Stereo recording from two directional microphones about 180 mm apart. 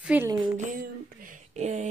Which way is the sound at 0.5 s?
50° right (ahead or behind).